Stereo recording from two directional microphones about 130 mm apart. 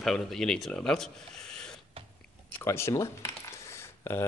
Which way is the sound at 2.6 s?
20° left (ahead or behind).